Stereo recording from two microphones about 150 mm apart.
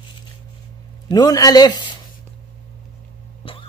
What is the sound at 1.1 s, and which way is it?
Speech, 25° left (ahead or behind).